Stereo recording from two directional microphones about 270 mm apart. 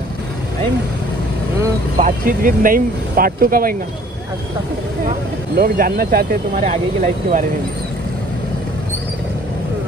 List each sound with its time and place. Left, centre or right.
2.0 s speech: right
5.6 s speech: right